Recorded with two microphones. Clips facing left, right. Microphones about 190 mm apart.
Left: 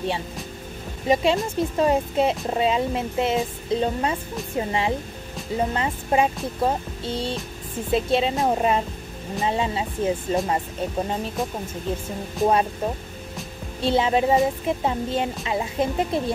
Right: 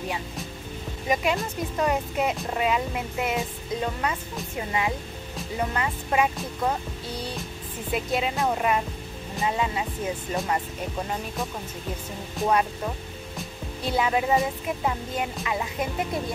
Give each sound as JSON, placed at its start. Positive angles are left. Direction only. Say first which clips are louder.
{"t": 1.0, "sound": "speech", "louder": "left 5 dB", "side_deg": 25}
{"t": 12.4, "sound": "speech", "louder": "left 3 dB", "side_deg": 30}